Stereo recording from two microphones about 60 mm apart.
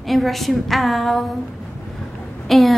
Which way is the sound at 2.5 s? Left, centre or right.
Centre.